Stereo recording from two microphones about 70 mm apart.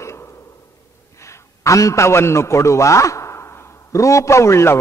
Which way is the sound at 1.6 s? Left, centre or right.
Left.